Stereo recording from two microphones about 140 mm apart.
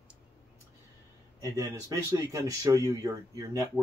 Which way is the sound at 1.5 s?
25° right (ahead or behind).